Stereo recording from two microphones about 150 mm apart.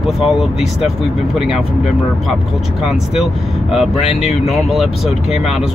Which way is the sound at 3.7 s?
Centre (ahead or behind).